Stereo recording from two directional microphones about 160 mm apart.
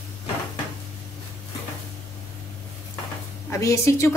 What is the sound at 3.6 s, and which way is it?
Speech, 20° left (ahead or behind).